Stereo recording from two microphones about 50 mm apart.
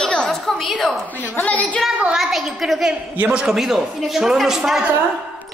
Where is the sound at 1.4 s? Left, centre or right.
Left.